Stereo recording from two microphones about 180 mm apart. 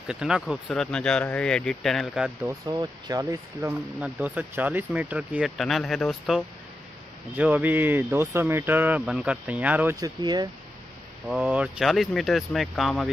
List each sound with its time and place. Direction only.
0.1 s speech: 5° right (ahead or behind)
2.4 s speech: 20° right (ahead or behind)
9.9 s speech: 20° right (ahead or behind)
11.2 s speech: 5° right (ahead or behind)